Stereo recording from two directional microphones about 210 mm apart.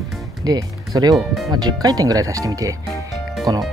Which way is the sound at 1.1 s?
Centre (ahead or behind).